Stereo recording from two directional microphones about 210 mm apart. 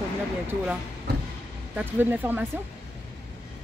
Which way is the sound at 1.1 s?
50° right (ahead or behind).